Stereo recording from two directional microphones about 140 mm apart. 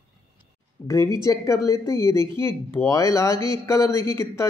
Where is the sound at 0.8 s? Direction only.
20° left (ahead or behind).